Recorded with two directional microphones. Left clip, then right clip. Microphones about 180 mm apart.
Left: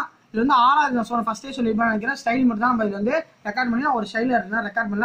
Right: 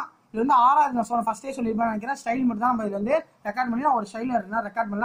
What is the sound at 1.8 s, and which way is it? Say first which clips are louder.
Speech: left 4 dB; 35° right (ahead or behind).